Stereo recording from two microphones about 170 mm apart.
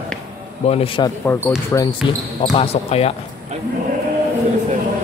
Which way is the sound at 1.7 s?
20° left (ahead or behind).